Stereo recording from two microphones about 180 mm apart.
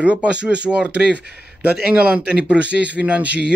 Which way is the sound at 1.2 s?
60° right (ahead or behind).